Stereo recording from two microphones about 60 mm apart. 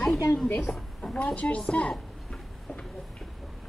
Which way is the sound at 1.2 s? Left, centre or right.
Left.